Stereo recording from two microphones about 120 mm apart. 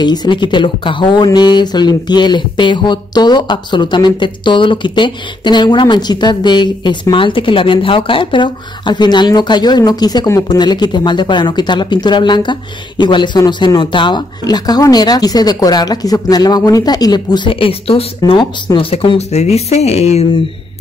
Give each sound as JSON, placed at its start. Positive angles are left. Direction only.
{"t": 0.0, "sound": "speech", "side_deg": 35}
{"t": 18.2, "sound": "speech", "side_deg": 40}